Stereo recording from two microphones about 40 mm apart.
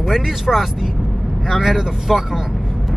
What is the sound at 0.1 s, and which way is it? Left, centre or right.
Speech, centre.